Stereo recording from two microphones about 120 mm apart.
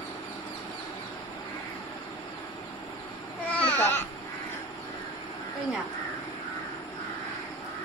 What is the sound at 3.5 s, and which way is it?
Baby cry, 20° left (ahead or behind).